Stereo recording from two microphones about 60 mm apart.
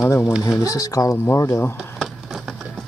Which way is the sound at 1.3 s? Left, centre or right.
Left.